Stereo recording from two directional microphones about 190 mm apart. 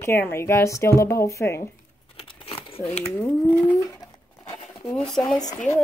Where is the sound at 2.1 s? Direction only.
30° left (ahead or behind).